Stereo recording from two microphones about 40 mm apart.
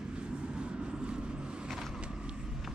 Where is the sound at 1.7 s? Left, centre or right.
Centre.